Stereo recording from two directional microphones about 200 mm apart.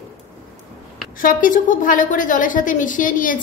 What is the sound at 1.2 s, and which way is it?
A woman's voice, 40° left (ahead or behind).